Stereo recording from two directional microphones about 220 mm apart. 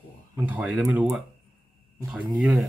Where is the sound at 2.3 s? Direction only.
Centre (ahead or behind).